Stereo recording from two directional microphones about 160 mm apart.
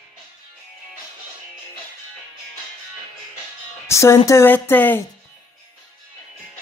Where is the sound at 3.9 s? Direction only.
20° left (ahead or behind).